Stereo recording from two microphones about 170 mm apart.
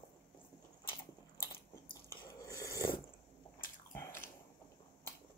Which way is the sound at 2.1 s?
20° left (ahead or behind).